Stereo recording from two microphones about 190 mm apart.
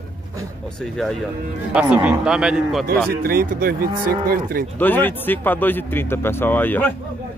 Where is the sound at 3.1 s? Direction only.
50° right (ahead or behind).